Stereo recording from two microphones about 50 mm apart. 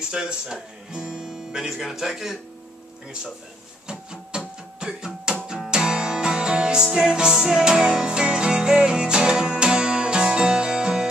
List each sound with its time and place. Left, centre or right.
0.1 s speech: centre
3.8 s music: centre